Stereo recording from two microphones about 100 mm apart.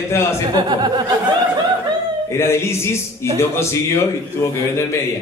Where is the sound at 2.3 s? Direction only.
25° left (ahead or behind).